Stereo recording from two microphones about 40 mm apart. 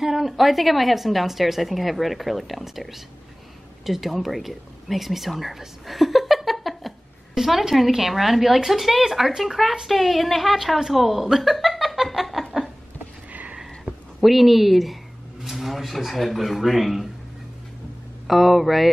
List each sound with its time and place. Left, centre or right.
0.0 s a woman's voice: centre
13.3 s a sound: right
14.2 s a woman's voice: centre
18.2 s a woman's voice: centre